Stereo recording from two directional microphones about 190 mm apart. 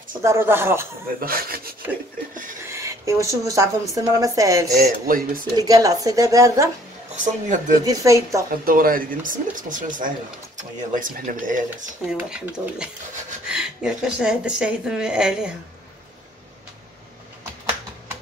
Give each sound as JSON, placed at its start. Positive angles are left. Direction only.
{"t": 0.2, "sound": "speech", "side_deg": -15}
{"t": 1.2, "sound": "speech", "side_deg": -50}
{"t": 2.6, "sound": "a woman's voice", "side_deg": -15}
{"t": 5.0, "sound": "speech", "side_deg": -50}
{"t": 5.6, "sound": "speech", "side_deg": -20}
{"t": 7.4, "sound": "speech", "side_deg": -40}
{"t": 7.8, "sound": "speech", "side_deg": -20}
{"t": 8.5, "sound": "speech", "side_deg": -50}
{"t": 12.0, "sound": "a woman's voice", "side_deg": -5}